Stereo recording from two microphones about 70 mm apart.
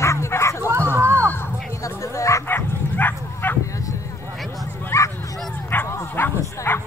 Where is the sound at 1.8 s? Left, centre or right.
Left.